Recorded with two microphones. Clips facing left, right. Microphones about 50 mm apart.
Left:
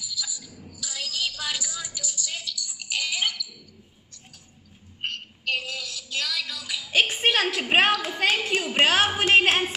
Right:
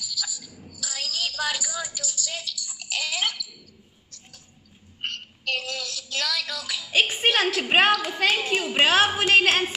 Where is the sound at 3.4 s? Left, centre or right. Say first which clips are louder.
Left 1 dB; right.